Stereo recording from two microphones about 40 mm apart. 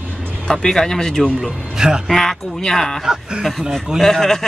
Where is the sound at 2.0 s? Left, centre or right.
Centre.